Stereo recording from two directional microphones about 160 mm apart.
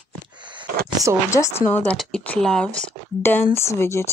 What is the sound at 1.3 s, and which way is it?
Speech, 20° left (ahead or behind).